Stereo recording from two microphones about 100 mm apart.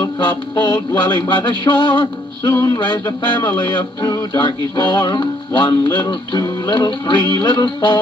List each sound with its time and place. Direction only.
0.0 s music: 50° left (ahead or behind)
2.5 s music: 35° left (ahead or behind)